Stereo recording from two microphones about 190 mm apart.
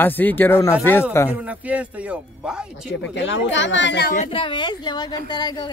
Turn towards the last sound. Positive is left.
turn(degrees=25)  # may be behind; listen again after turning